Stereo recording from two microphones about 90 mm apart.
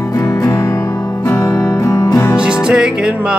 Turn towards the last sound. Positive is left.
turn(degrees=-10)  # may be behind; listen again after turning